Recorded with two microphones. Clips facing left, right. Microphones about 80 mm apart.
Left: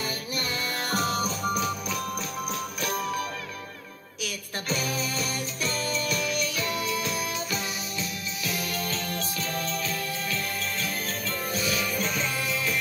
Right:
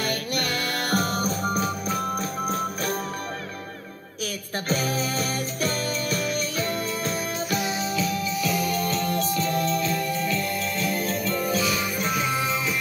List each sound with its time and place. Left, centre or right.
0.0 s music: right
4.2 s music: right
12.0 s music: centre